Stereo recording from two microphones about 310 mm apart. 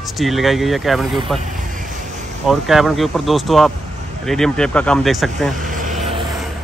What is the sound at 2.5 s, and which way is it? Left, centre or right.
Speech, centre.